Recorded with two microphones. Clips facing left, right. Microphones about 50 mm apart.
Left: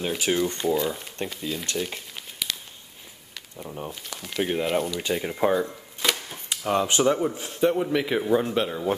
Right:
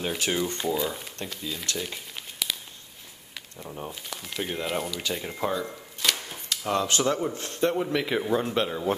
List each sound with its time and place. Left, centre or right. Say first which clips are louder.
0.0 s a man's voice: left 3 dB; centre
2.1 s a sound: right 1 dB; centre
3.5 s a man's voice: left 2 dB; centre
4.4 s speech: left 6 dB; centre
4.6 s a man's voice: left 4 dB; centre
5.4 s speech: left 6 dB; left
7.2 s a man's voice: left 3 dB; centre